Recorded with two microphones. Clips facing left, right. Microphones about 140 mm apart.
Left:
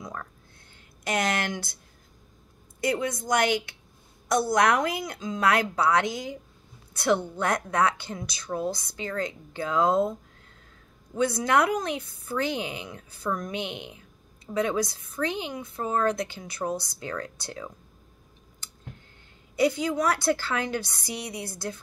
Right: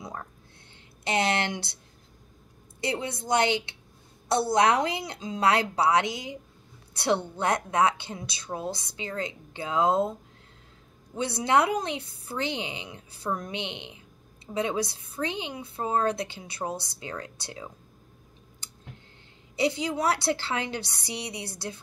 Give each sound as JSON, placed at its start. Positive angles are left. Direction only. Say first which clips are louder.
{"t": 0.0, "sound": "a sound", "louder": "left 1 dB", "side_deg": -30}
{"t": 1.0, "sound": "a woman's voice", "louder": "right 1 dB", "side_deg": -25}
{"t": 2.8, "sound": "a woman's voice", "louder": "left 4 dB", "side_deg": -30}
{"t": 6.9, "sound": "a sound", "louder": "left 2 dB", "side_deg": -25}
{"t": 7.3, "sound": "a woman's voice", "louder": "even", "side_deg": -25}
{"t": 11.1, "sound": "a woman's voice", "louder": "left 1 dB", "side_deg": -25}
{"t": 17.2, "sound": "speech", "louder": "left 3 dB", "side_deg": -15}
{"t": 19.7, "sound": "a woman's voice", "louder": "left 1 dB", "side_deg": -25}